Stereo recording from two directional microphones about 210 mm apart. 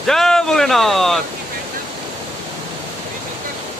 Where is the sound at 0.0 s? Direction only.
Centre (ahead or behind).